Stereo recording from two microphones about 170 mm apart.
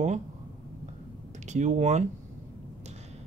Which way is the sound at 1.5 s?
45° right (ahead or behind).